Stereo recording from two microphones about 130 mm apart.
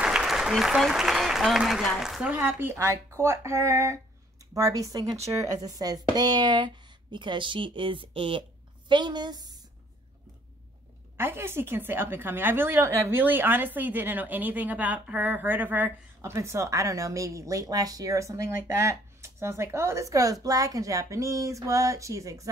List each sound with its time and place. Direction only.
0.0 s speech: 5° right (ahead or behind)
2.3 s a woman's voice: 15° right (ahead or behind)
11.1 s a woman's voice: 20° right (ahead or behind)